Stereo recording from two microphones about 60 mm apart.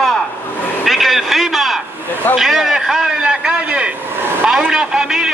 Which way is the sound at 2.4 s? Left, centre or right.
Centre.